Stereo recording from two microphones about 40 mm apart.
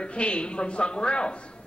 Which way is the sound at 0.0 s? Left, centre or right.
Left.